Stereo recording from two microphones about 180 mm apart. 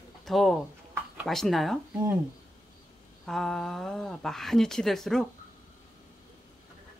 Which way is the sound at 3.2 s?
Centre (ahead or behind).